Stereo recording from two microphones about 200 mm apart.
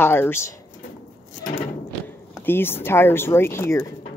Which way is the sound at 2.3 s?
10° left (ahead or behind).